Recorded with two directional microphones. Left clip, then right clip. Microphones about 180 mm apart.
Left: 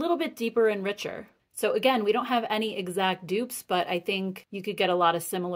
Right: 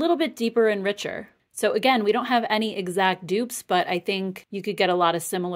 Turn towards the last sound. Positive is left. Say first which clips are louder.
# right 2 dB
turn(degrees=-35)  # may be behind; listen again after turning